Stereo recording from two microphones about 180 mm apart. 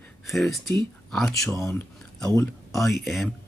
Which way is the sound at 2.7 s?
Centre (ahead or behind).